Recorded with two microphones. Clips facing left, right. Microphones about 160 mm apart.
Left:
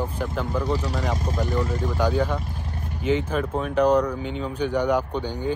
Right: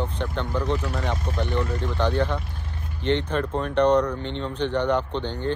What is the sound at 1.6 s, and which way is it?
Speech, 5° left (ahead or behind).